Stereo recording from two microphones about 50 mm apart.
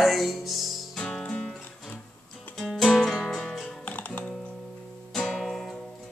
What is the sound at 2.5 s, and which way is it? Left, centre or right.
Music, centre.